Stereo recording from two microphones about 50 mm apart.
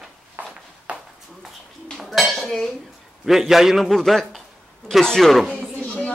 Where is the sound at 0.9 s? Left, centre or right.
Right.